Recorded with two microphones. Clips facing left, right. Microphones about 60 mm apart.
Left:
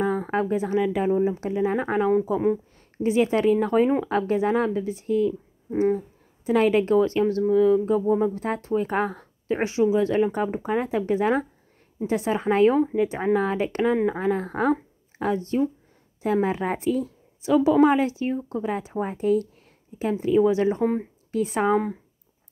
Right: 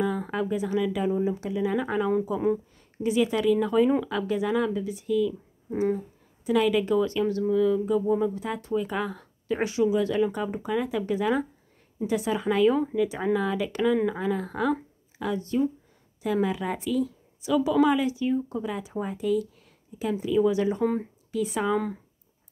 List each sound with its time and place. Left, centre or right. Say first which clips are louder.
0.0 s speech: left 3 dB; left; by 21.1 s centre
21.3 s speech: left 4 dB; left